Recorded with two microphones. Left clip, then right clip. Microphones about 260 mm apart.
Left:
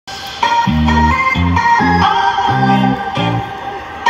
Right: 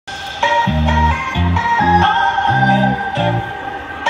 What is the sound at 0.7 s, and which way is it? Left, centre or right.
Music, left.